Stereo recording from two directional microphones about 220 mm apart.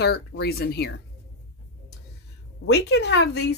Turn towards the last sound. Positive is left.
turn(degrees=50)  # may be behind; listen again after turning